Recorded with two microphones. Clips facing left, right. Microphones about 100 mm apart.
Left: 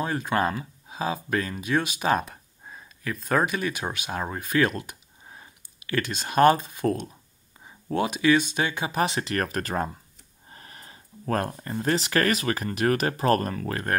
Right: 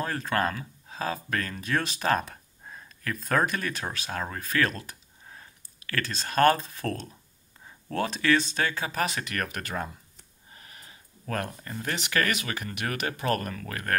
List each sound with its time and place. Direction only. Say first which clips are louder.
0.0 s speech: left 3 dB; 10° left (ahead or behind); by 13.8 s 35° left (ahead or behind)